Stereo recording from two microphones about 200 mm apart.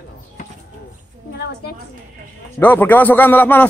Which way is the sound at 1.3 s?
55° left (ahead or behind).